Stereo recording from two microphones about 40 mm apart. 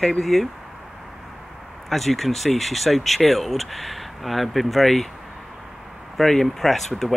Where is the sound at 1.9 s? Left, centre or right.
Centre.